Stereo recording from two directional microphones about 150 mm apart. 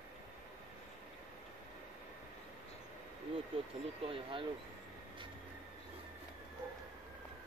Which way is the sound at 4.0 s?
35° right (ahead or behind).